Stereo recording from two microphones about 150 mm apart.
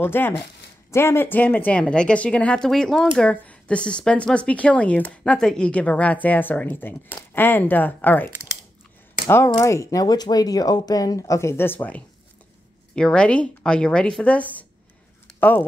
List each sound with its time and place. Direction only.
0.0 s speech: 15° left (ahead or behind)
9.3 s speech: 20° left (ahead or behind)